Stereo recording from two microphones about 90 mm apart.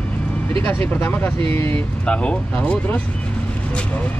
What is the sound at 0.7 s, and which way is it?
Speech, 25° left (ahead or behind).